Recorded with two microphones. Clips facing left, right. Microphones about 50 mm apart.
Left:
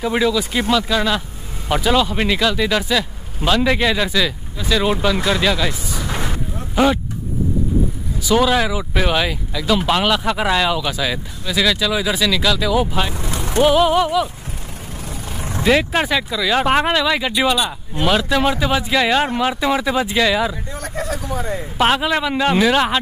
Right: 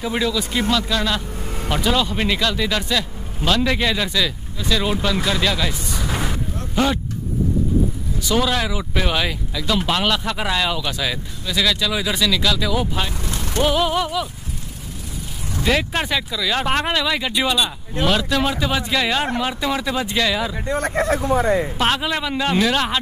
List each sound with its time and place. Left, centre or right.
0.0 s speech: centre
8.2 s speech: centre
15.6 s speech: centre
20.6 s speech: right
21.7 s speech: centre